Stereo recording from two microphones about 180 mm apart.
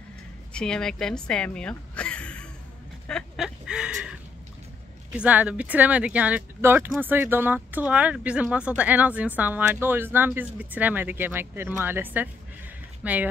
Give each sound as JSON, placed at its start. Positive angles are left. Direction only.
{"t": 0.5, "sound": "speech", "side_deg": 5}
{"t": 3.1, "sound": "a sound", "side_deg": 0}
{"t": 5.1, "sound": "speech", "side_deg": -10}